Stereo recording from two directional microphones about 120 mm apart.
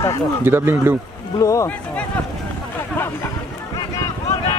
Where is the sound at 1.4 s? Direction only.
25° left (ahead or behind).